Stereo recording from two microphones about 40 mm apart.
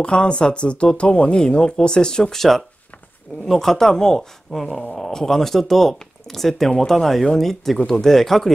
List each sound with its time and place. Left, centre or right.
0.0 s speech: left
2.3 s speech: centre